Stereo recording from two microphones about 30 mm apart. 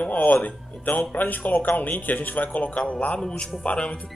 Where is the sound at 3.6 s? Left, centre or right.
Left.